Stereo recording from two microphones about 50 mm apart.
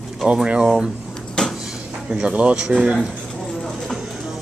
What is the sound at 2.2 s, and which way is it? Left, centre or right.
Speech, right.